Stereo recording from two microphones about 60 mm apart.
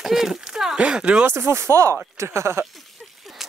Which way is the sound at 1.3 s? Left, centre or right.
Right.